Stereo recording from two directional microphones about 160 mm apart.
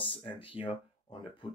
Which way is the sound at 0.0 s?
30° left (ahead or behind).